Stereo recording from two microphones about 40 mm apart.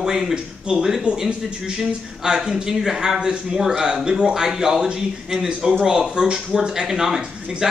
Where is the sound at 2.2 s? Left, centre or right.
Centre.